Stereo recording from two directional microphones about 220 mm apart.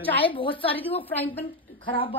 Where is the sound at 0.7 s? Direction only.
10° left (ahead or behind).